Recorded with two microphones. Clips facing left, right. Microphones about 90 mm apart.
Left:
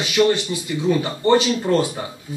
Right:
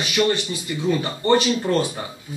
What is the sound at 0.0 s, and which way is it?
Speech, 20° left (ahead or behind).